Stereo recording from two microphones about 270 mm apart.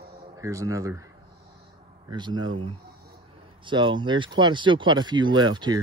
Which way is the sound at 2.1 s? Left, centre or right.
Centre.